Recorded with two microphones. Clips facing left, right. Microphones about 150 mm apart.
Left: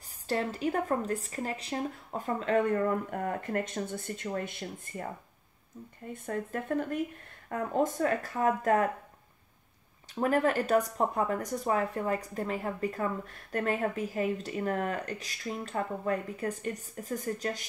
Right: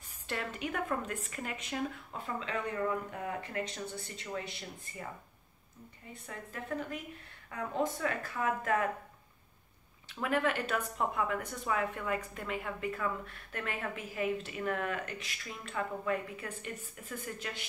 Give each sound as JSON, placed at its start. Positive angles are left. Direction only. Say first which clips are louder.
{"t": 0.3, "sound": "speech", "louder": "left 7 dB", "side_deg": 35}
{"t": 6.1, "sound": "speech", "louder": "left 10 dB", "side_deg": 50}
{"t": 10.1, "sound": "speech", "louder": "left 5 dB", "side_deg": 40}